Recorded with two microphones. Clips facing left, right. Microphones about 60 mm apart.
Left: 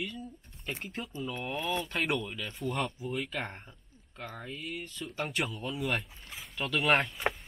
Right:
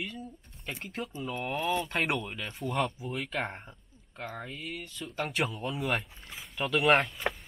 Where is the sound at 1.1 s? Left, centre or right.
Right.